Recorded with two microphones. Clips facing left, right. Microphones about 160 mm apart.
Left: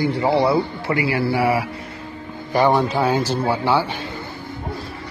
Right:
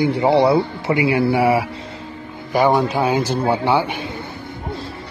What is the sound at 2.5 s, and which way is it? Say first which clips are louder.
Speech: right 1 dB; 10° right (ahead or behind).